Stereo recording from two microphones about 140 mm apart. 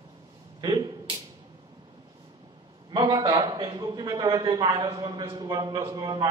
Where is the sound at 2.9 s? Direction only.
35° right (ahead or behind).